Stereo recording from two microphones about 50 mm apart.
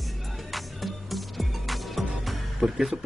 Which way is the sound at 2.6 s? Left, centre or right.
Centre.